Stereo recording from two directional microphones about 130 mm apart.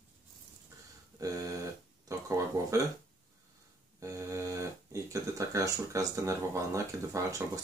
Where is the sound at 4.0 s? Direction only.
25° right (ahead or behind).